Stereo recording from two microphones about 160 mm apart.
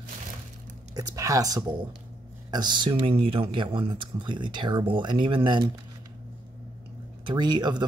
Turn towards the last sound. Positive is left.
turn(degrees=-25)  # may be behind; listen again after turning